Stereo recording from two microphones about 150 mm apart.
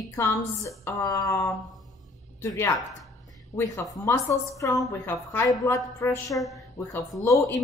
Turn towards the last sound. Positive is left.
turn(degrees=20)  # may be behind; listen again after turning